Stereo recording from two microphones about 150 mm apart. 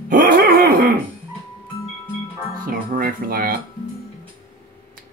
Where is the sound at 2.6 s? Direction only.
65° right (ahead or behind).